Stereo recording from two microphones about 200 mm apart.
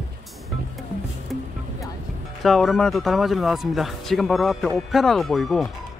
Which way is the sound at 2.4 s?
Centre (ahead or behind).